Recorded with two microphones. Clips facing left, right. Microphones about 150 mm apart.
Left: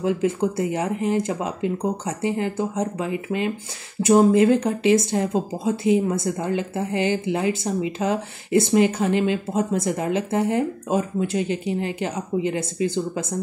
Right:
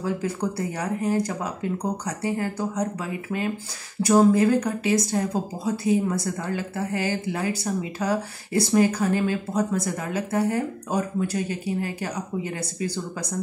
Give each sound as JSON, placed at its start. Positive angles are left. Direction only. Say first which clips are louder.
{"t": 0.0, "sound": "speech", "louder": "left 5 dB", "side_deg": 20}